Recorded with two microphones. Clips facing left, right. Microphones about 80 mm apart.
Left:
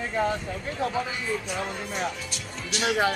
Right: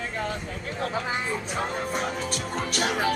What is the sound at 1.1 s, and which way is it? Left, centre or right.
Speech, right.